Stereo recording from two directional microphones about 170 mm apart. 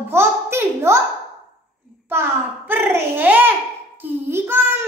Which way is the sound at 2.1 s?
15° right (ahead or behind).